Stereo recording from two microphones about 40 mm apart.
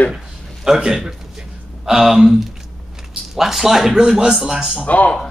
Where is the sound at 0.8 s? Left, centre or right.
Centre.